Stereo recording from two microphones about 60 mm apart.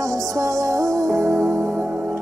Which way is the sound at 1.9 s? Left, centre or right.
Right.